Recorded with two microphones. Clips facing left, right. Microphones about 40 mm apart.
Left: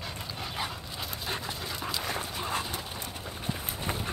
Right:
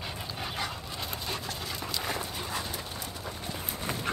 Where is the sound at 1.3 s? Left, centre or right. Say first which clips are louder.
Left 1 dB; left.